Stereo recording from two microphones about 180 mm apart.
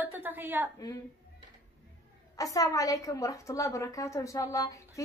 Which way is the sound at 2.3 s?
20° left (ahead or behind).